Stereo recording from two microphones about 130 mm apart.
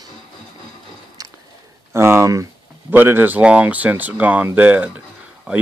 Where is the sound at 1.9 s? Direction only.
20° right (ahead or behind).